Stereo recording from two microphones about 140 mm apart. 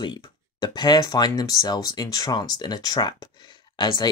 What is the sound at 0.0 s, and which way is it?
Speech, 35° left (ahead or behind).